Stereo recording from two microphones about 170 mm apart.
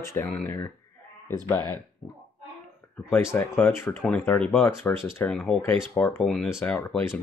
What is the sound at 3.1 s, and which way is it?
Speech, 15° left (ahead or behind).